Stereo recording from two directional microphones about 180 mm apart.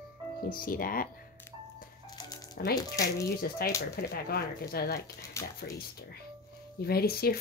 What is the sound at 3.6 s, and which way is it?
Speech, 55° left (ahead or behind).